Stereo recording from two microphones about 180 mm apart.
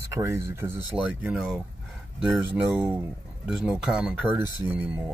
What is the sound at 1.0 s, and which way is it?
Speech, centre (ahead or behind).